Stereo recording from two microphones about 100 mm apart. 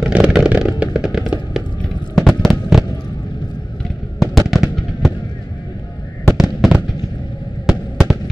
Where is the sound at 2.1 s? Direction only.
5° left (ahead or behind).